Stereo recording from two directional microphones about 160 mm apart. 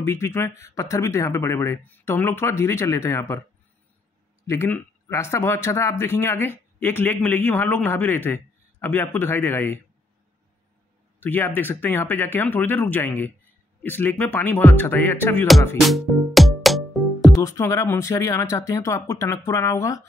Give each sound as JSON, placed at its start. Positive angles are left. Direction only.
{"t": 0.0, "sound": "speech", "side_deg": 15}
{"t": 4.5, "sound": "speech", "side_deg": 15}
{"t": 11.1, "sound": "speech", "side_deg": 10}
{"t": 15.9, "sound": "music", "side_deg": 0}
{"t": 17.4, "sound": "speech", "side_deg": 20}